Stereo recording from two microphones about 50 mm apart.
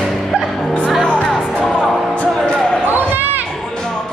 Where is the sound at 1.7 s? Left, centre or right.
Centre.